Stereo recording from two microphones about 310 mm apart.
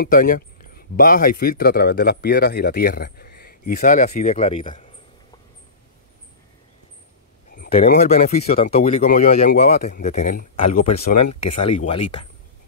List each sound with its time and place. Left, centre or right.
0.0 s speech: left
7.5 s speech: left